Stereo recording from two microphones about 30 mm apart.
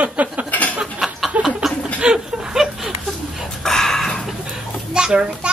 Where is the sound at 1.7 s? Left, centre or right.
Centre.